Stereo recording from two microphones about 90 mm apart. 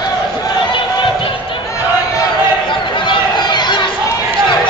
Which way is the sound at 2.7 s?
60° left (ahead or behind).